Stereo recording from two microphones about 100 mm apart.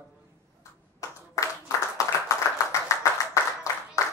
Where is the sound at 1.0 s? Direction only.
30° left (ahead or behind).